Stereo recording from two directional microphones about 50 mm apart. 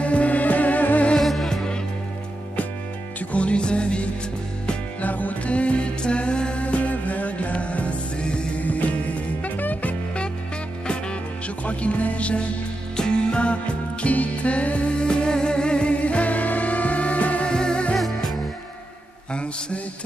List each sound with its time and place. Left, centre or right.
0.0 s music: left
1.1 s music: centre
3.2 s music: left
5.0 s music: left
17.5 s music: centre
17.9 s music: centre
19.3 s mantra: left